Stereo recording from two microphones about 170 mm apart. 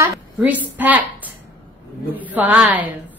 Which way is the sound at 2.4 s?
10° right (ahead or behind).